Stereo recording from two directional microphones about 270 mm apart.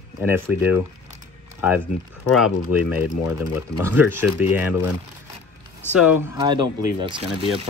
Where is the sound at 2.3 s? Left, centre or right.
Centre.